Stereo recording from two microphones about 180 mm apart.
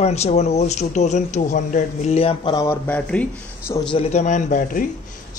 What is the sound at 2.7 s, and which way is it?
Speech, 10° left (ahead or behind).